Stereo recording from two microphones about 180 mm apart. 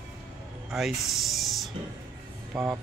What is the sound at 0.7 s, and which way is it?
Speech, centre (ahead or behind).